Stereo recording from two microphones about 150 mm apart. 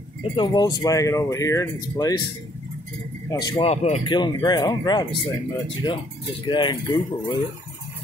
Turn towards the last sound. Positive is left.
turn(degrees=30)  # may be behind; listen again after turning